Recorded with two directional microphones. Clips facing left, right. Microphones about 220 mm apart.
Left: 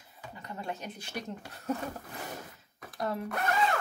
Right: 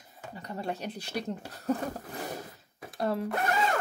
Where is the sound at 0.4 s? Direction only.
35° right (ahead or behind).